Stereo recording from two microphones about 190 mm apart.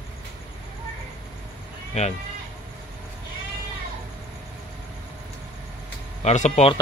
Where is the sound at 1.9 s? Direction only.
35° left (ahead or behind).